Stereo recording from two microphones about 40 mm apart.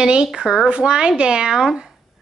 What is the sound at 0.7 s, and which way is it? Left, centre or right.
Speech, right.